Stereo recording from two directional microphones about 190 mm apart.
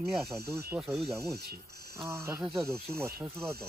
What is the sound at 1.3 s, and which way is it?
Speech, 55° right (ahead or behind).